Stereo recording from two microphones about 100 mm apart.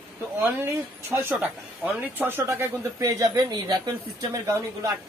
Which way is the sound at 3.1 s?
40° right (ahead or behind).